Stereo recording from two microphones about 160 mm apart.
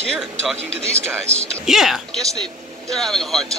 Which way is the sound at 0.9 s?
15° right (ahead or behind).